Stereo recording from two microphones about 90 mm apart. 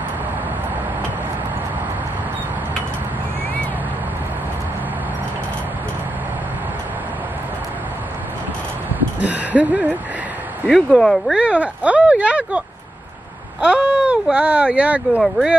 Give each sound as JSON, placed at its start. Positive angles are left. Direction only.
{"t": 9.2, "sound": "a sound", "side_deg": -15}
{"t": 10.7, "sound": "speech", "side_deg": 5}
{"t": 11.3, "sound": "speech", "side_deg": -15}